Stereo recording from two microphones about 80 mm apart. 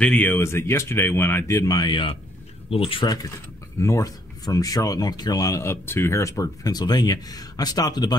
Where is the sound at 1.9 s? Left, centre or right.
Left.